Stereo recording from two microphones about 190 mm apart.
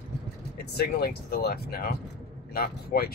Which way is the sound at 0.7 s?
55° left (ahead or behind).